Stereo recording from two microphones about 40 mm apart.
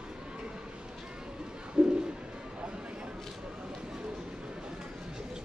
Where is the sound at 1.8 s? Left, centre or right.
Right.